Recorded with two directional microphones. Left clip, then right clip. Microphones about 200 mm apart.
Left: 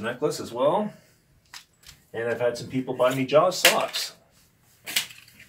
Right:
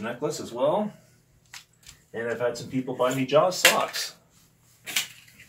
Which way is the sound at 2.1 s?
5° right (ahead or behind).